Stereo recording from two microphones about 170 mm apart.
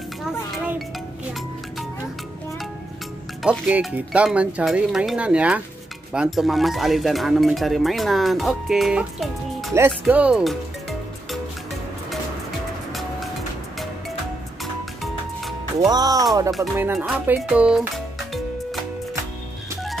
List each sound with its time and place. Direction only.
0.2 s a sound: centre (ahead or behind)
3.4 s speech: 10° right (ahead or behind)
9.8 s music: 10° right (ahead or behind)
15.9 s speech: 20° right (ahead or behind)
16.9 s speech: centre (ahead or behind)
17.4 s music: 5° right (ahead or behind)